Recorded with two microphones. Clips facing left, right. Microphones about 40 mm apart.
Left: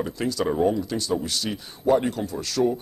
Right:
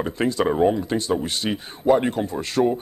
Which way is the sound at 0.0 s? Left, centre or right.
Right.